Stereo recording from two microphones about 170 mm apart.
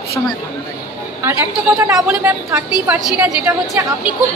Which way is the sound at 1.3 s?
15° right (ahead or behind).